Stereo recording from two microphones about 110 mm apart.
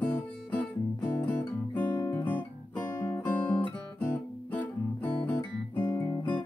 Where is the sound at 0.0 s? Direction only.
15° left (ahead or behind).